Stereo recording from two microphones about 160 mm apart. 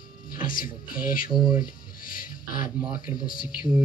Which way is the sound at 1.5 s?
60° left (ahead or behind).